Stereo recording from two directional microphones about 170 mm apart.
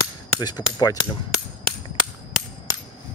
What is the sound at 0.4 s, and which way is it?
Speech, 25° left (ahead or behind).